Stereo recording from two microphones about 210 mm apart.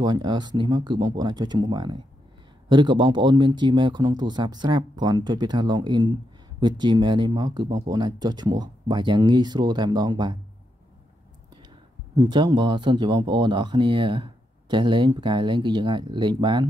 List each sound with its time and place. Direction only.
0.0 s speech: 20° right (ahead or behind)
12.2 s speech: 20° right (ahead or behind)